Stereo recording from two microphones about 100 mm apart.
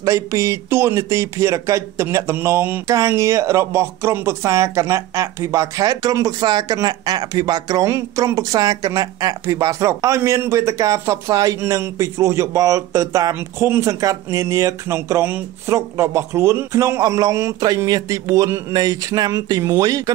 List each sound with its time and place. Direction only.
0.0 s speech: 30° right (ahead or behind)
13.3 s speech: 25° right (ahead or behind)